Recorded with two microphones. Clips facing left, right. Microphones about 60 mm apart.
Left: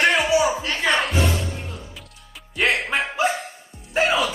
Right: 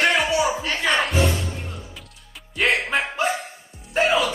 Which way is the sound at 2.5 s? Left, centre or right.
Centre.